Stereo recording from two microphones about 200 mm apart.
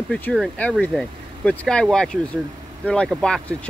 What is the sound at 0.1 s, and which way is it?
Speech, 5° left (ahead or behind).